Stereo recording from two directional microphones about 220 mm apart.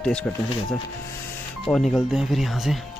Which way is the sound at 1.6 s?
Centre (ahead or behind).